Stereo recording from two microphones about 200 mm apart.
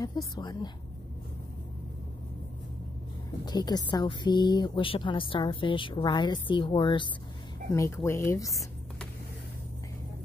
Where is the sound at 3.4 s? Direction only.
20° left (ahead or behind).